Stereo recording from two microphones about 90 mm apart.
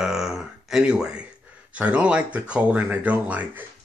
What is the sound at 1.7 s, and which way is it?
Speech, 15° right (ahead or behind).